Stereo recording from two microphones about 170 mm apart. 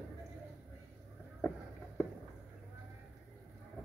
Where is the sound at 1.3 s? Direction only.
5° left (ahead or behind).